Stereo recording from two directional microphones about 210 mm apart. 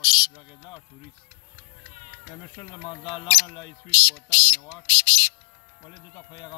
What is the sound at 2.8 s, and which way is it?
Speech, 25° left (ahead or behind).